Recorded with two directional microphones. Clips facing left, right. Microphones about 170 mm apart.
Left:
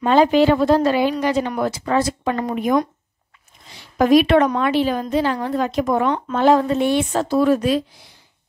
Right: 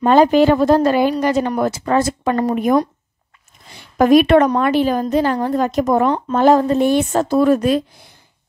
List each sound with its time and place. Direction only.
0.0 s a woman's voice: 45° right (ahead or behind)
3.7 s a woman's voice: 50° right (ahead or behind)